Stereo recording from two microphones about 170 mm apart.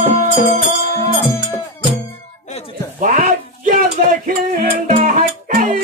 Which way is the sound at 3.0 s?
50° right (ahead or behind).